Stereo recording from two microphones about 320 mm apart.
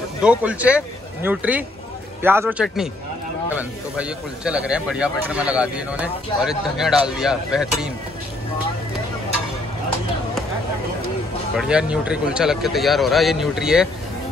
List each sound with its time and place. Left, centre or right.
0.2 s speech: centre
11.5 s speech: centre